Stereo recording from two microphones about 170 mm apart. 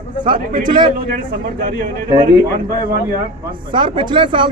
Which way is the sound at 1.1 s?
60° right (ahead or behind).